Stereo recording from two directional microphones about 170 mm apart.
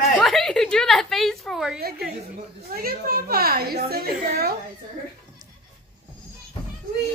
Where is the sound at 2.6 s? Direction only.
60° right (ahead or behind).